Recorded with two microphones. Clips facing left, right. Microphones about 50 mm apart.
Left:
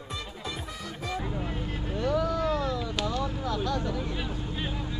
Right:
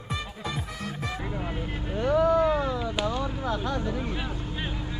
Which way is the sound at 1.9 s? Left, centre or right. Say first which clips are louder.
Right 6 dB; centre.